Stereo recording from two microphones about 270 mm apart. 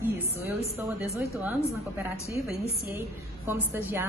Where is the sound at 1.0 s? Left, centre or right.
Centre.